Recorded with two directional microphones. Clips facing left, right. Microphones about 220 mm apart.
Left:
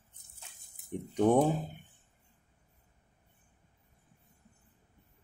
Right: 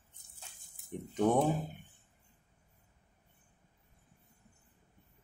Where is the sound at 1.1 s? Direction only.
10° left (ahead or behind).